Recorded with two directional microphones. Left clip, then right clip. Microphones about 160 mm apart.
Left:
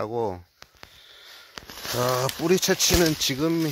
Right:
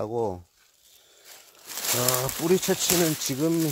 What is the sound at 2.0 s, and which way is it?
Speech, 20° left (ahead or behind).